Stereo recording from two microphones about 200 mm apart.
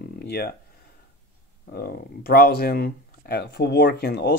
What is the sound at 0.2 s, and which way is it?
Speech, 50° left (ahead or behind).